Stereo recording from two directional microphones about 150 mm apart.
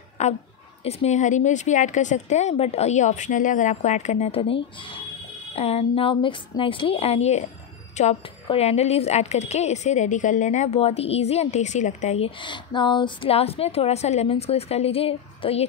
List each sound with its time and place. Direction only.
0.2 s a woman's voice: 50° left (ahead or behind)
12.4 s a woman's voice: 30° left (ahead or behind)